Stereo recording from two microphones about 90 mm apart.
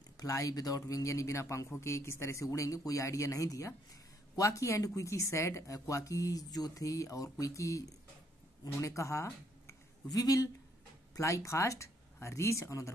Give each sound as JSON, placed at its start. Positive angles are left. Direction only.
{"t": 0.2, "sound": "speech", "side_deg": 40}